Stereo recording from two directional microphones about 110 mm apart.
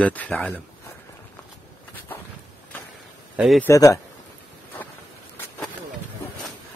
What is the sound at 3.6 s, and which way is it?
Speech, 30° left (ahead or behind).